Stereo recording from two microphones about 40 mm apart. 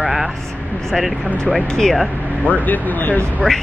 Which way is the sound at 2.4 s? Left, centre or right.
Left.